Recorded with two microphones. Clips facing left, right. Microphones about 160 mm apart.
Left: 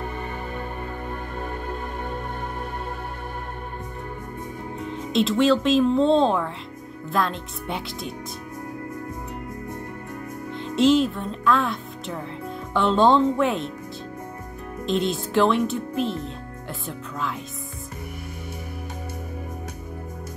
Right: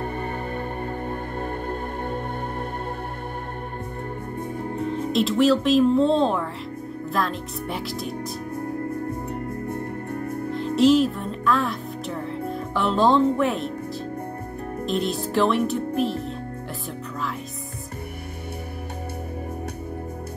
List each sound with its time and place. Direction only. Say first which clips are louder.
0.2 s music: right 3 dB; 50° right (ahead or behind)
5.1 s speech: even; centre (ahead or behind)
10.5 s speech: right 1 dB; centre (ahead or behind)
14.9 s speech: left 2 dB; centre (ahead or behind)